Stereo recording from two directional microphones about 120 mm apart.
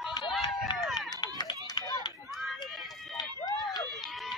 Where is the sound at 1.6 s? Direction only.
35° left (ahead or behind).